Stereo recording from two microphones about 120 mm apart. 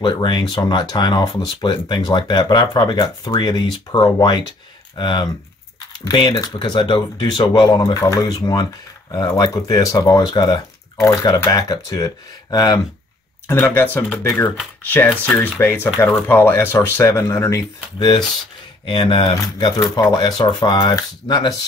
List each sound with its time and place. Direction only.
0.0 s speech: 40° left (ahead or behind)
13.5 s speech: 20° left (ahead or behind)
17.9 s speech: 35° left (ahead or behind)